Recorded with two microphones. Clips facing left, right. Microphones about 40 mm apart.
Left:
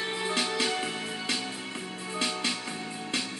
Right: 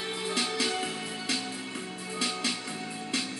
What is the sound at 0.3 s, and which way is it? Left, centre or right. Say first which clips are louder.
Music: left 1 dB; left.